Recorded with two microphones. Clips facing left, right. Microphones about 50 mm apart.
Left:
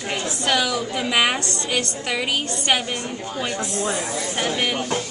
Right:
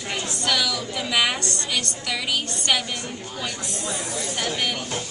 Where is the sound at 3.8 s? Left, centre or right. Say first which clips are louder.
Left 3 dB; left.